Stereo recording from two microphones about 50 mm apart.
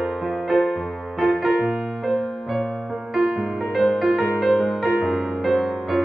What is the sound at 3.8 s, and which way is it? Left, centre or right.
Music, centre.